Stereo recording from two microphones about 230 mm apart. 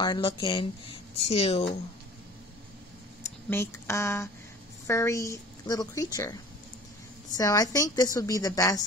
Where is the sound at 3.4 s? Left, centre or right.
Centre.